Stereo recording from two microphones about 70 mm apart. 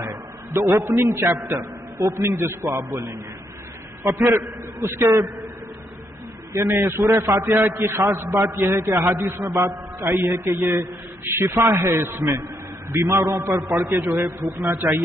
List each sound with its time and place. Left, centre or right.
0.0 s a sound: right
0.7 s a man's voice: right
1.4 s a man's voice: right
2.2 s a man's voice: right
2.6 s a man's voice: right
6.5 s a man's voice: right
8.6 s a man's voice: right
14.2 s a man's voice: right